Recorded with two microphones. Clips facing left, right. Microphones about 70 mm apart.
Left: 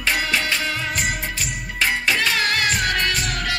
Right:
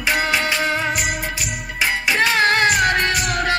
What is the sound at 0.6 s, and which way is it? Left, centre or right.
Music of bollywood, right.